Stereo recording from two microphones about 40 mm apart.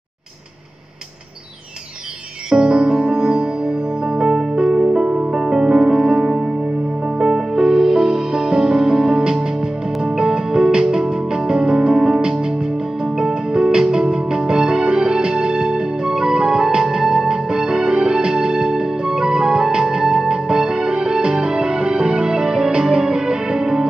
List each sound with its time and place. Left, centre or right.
2.5 s music: centre
4.2 s music: centre
4.6 s music: right
7.2 s music: centre